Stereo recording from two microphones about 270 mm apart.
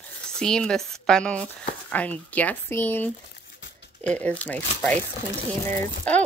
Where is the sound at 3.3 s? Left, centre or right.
Left.